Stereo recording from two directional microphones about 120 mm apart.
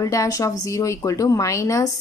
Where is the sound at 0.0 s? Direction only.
30° left (ahead or behind).